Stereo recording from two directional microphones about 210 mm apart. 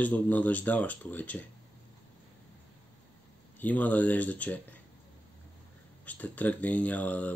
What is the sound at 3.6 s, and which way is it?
Speech, 10° left (ahead or behind).